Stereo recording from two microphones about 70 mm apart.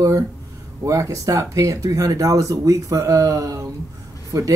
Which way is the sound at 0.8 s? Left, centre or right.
Right.